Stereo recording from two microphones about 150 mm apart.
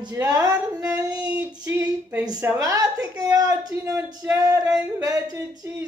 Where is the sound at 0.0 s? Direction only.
25° right (ahead or behind).